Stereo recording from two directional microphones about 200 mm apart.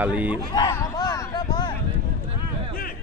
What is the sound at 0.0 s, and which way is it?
Speech, 10° right (ahead or behind).